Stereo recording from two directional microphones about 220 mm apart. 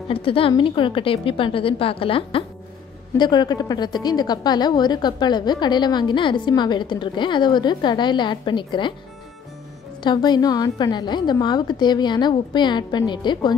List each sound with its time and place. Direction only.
0.1 s a woman's voice: 25° left (ahead or behind)
10.0 s a woman's voice: 20° left (ahead or behind)